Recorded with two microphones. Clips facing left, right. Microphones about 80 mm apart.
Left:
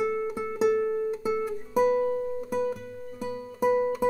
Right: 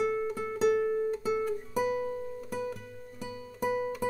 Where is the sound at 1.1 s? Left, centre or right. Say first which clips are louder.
Left 2 dB; centre.